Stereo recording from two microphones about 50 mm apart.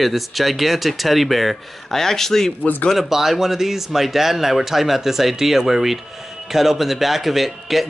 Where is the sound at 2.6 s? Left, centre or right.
Left.